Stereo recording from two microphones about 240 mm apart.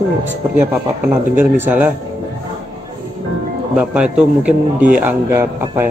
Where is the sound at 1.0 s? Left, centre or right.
Centre.